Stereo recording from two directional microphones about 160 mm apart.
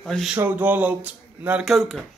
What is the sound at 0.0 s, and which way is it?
Speech, centre (ahead or behind).